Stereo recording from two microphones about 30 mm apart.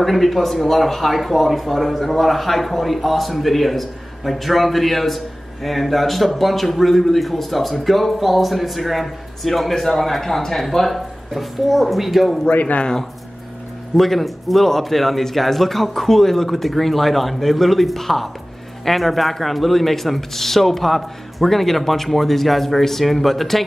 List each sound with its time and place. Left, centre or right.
0.0 s a man's voice: centre
12.5 s speech: left
13.9 s a man's voice: centre